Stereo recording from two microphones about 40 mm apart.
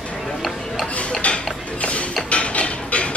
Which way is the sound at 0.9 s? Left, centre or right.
Left.